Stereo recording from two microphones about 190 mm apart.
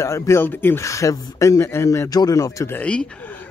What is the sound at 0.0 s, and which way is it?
Speech, 15° left (ahead or behind).